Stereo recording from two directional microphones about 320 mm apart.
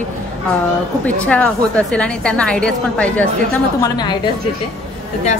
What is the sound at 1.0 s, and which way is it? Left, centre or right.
A woman's voice, centre.